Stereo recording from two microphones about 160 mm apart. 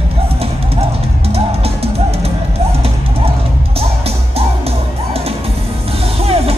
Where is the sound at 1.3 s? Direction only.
40° right (ahead or behind).